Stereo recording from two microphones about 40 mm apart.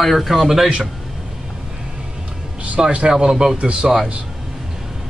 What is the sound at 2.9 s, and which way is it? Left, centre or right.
Speech, right.